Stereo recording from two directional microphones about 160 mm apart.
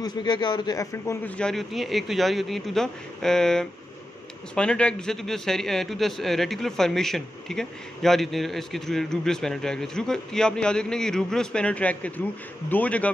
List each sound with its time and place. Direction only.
0.0 s a man's voice: 25° left (ahead or behind)
1.2 s a man's voice: 5° left (ahead or behind)